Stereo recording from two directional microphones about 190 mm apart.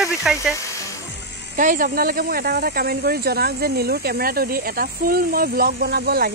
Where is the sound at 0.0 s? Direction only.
5° right (ahead or behind).